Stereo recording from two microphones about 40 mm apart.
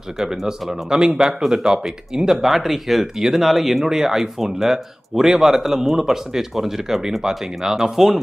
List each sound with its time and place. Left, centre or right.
0.2 s speech: centre
1.4 s speech: centre